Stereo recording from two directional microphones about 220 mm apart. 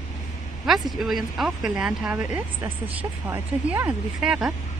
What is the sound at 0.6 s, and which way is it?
Speech, centre (ahead or behind).